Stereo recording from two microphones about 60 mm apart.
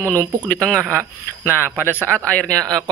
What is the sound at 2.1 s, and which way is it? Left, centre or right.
Speech, centre.